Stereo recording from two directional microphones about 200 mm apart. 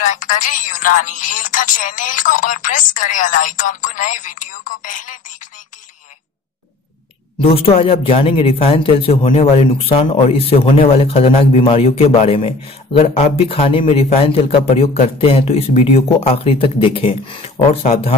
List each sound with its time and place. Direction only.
0.0 s a woman's voice: 40° left (ahead or behind)
7.4 s speech: 30° left (ahead or behind)